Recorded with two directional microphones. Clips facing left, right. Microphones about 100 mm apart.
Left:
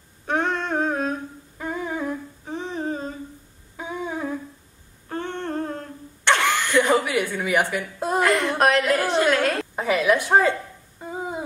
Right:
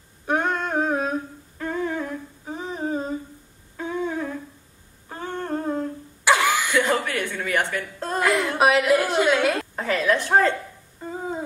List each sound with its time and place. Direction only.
0.3 s humming: 5° right (ahead or behind)
1.6 s humming: 15° left (ahead or behind)
2.4 s humming: 5° right (ahead or behind)
3.7 s humming: 10° left (ahead or behind)
5.1 s humming: 5° right (ahead or behind)
6.8 s chuckle: 10° left (ahead or behind)
8.2 s a woman's voice: centre (ahead or behind)
9.8 s a woman's voice: 15° left (ahead or behind)
11.0 s a sound: 10° left (ahead or behind)